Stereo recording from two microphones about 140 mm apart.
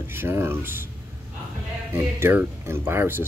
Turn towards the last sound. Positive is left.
turn(degrees=-15)  # may be behind; listen again after turning